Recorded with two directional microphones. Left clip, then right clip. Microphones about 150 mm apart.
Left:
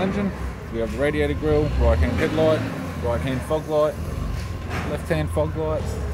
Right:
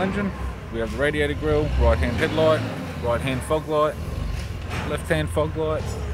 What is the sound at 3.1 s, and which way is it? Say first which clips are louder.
Speech: right 1 dB; 10° right (ahead or behind).